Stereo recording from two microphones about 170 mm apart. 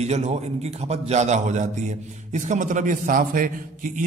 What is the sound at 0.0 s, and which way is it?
A man's voice, 40° right (ahead or behind).